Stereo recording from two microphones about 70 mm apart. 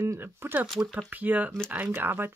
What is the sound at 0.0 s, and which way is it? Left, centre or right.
Speech, right.